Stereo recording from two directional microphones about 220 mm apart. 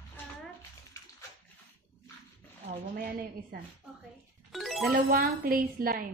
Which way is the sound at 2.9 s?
40° right (ahead or behind).